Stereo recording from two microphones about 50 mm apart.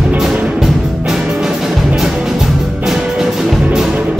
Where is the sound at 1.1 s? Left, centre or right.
Centre.